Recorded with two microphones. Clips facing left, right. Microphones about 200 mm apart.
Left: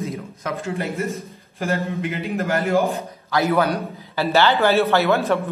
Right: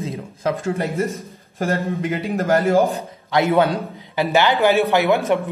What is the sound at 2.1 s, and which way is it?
Speech, 35° right (ahead or behind).